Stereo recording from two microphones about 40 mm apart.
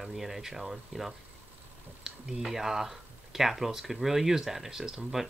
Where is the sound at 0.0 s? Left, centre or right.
Centre.